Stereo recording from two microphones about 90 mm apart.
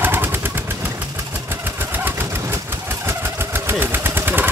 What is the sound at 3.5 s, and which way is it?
Vehicle, 25° right (ahead or behind).